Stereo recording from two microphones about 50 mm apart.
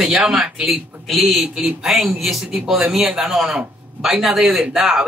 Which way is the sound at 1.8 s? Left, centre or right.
Centre.